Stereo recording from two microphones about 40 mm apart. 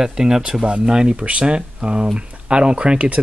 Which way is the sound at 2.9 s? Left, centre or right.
Right.